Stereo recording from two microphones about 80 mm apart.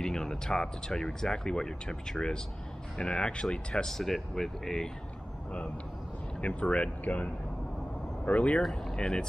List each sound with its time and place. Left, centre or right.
0.0 s speech: centre
6.4 s speech: centre
8.3 s speech: centre
8.6 s speech: centre